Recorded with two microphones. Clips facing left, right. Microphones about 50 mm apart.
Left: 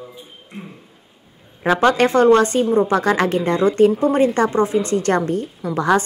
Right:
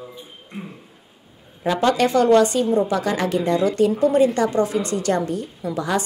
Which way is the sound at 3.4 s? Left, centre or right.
Left.